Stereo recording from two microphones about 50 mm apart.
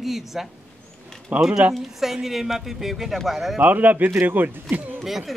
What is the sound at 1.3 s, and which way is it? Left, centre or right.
Speech, right.